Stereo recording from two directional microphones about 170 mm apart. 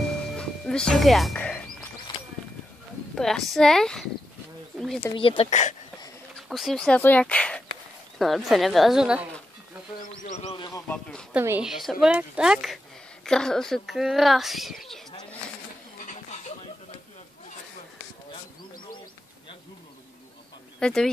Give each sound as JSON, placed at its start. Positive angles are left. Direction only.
{"t": 0.3, "sound": "music", "side_deg": 5}
{"t": 3.2, "sound": "speech", "side_deg": 0}
{"t": 5.0, "sound": "speech", "side_deg": 30}
{"t": 5.5, "sound": "speech", "side_deg": 45}
{"t": 6.5, "sound": "speech", "side_deg": 0}
{"t": 10.5, "sound": "a sound", "side_deg": 25}
{"t": 10.9, "sound": "speech", "side_deg": 5}
{"t": 11.3, "sound": "speech", "side_deg": -10}
{"t": 16.0, "sound": "a sound", "side_deg": 45}
{"t": 20.8, "sound": "speech", "side_deg": 5}